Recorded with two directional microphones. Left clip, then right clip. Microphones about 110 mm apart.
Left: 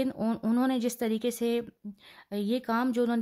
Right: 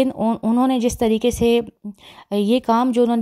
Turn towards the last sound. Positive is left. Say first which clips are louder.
# right 11 dB
turn(degrees=-45)  # may be behind; listen again after turning